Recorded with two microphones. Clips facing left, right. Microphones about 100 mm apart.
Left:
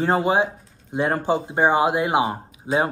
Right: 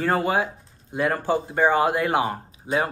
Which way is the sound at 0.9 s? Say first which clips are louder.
Left 1 dB; 25° left (ahead or behind).